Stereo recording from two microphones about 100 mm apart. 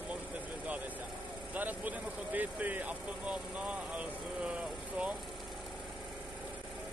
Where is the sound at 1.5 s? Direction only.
15° right (ahead or behind).